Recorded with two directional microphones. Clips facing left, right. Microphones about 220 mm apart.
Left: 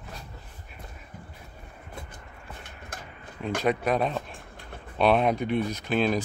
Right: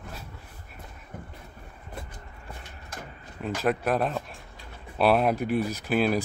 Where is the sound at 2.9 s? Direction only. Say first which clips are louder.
Right 2 dB; 50° left (ahead or behind).